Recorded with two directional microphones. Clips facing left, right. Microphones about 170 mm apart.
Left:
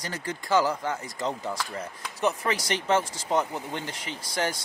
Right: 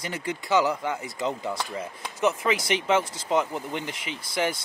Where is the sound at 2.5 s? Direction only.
40° left (ahead or behind).